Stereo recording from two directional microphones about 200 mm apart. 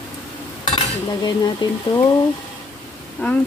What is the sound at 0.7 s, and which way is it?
Stir, 20° left (ahead or behind).